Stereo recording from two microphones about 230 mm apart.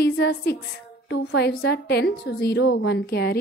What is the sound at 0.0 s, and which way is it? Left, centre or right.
A woman's voice, left.